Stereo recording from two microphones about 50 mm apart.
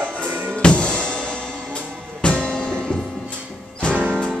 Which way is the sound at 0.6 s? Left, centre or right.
Left.